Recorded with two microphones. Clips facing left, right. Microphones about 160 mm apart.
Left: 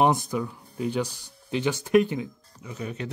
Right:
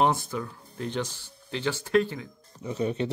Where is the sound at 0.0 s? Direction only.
15° left (ahead or behind).